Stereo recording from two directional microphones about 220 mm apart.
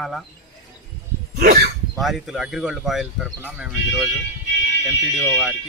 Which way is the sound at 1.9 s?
Centre (ahead or behind).